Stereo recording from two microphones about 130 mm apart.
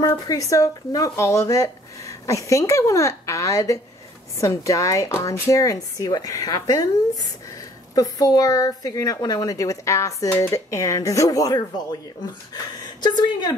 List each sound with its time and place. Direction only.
0.0 s a woman's voice: 25° left (ahead or behind)